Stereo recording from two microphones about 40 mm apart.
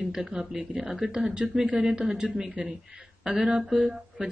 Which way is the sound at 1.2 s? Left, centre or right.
Right.